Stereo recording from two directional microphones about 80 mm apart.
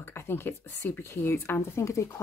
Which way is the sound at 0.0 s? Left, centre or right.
Left.